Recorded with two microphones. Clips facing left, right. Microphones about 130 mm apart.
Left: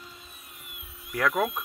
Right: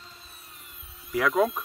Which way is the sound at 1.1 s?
Centre (ahead or behind).